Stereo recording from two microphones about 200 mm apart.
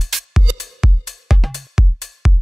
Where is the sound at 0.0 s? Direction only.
Centre (ahead or behind).